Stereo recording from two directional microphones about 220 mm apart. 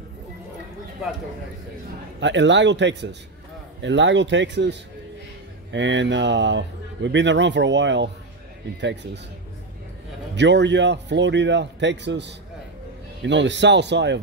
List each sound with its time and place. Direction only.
2.1 s a man's voice: 55° right (ahead or behind)
10.3 s a man's voice: 55° right (ahead or behind)